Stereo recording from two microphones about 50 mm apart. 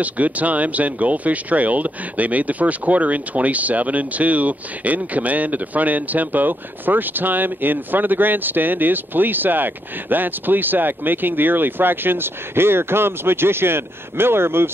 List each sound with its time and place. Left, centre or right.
0.0 s speech: right